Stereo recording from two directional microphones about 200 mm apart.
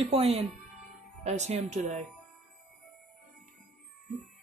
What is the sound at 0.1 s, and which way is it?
Speech, 30° right (ahead or behind).